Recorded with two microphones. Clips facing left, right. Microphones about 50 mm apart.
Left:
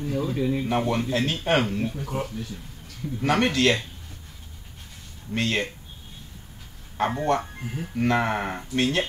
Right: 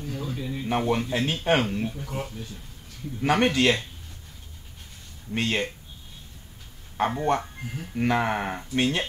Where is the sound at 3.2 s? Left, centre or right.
Centre.